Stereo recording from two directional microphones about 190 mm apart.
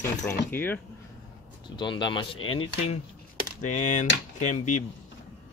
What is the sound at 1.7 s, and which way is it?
Speech, 25° left (ahead or behind).